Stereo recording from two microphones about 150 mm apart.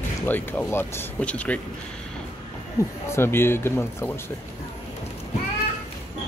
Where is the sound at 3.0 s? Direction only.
15° left (ahead or behind).